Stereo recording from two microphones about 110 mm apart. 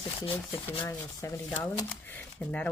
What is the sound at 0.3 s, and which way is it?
Speech, 20° left (ahead or behind).